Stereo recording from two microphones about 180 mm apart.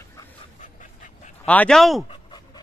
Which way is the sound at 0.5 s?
45° left (ahead or behind).